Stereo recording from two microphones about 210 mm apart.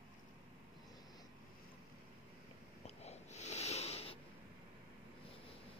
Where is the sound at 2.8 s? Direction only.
30° left (ahead or behind).